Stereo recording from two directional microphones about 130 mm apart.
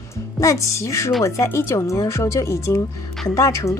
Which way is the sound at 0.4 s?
25° left (ahead or behind).